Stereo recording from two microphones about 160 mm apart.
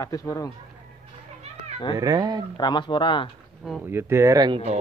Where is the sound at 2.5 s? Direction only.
30° left (ahead or behind).